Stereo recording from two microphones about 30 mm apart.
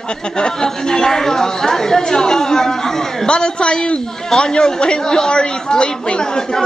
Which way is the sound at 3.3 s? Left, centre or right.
Left.